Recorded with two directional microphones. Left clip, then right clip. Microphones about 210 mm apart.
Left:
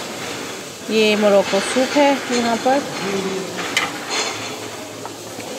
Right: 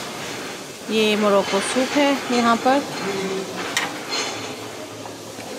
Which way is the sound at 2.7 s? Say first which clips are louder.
Left 3 dB; 15° right (ahead or behind).